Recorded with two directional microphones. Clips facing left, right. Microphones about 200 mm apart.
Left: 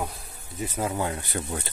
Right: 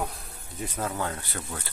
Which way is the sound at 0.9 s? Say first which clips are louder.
Left 3 dB; 15° left (ahead or behind).